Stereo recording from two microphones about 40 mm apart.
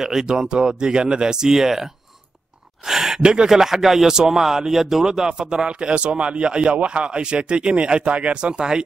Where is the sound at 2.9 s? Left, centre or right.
Centre.